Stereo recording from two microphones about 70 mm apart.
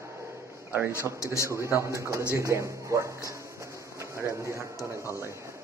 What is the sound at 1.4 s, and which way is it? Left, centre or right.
A man's voice, right.